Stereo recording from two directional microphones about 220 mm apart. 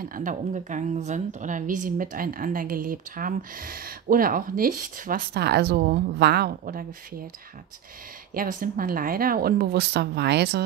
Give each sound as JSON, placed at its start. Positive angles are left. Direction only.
{"t": 0.0, "sound": "a woman's voice", "side_deg": -35}
{"t": 8.4, "sound": "a woman's voice", "side_deg": -40}